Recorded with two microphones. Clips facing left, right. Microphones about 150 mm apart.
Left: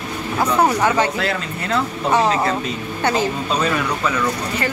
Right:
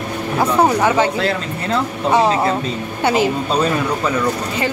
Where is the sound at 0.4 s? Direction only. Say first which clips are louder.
Right 2 dB; 10° right (ahead or behind).